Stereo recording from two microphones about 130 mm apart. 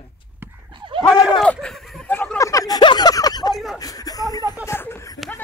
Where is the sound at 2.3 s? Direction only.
25° left (ahead or behind).